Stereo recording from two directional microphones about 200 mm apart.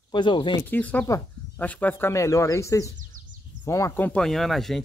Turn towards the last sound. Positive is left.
turn(degrees=0)  # may be behind; listen again after turning